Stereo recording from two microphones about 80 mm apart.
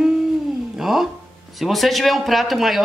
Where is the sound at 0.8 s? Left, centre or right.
Centre.